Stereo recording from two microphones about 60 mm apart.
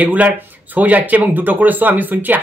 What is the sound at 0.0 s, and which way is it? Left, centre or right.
A man's voice, right.